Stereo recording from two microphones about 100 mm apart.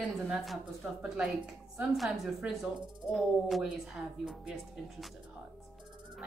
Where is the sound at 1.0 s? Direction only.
10° right (ahead or behind).